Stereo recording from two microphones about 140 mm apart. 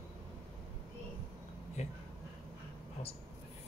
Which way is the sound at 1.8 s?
55° left (ahead or behind).